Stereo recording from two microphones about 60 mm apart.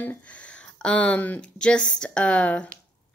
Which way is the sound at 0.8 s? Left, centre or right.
Left.